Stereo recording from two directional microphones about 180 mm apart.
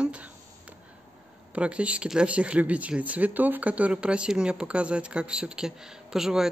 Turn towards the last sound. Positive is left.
turn(degrees=0)  # may be behind; listen again after turning